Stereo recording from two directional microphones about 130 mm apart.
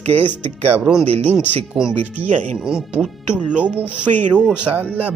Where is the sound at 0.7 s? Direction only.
5° right (ahead or behind).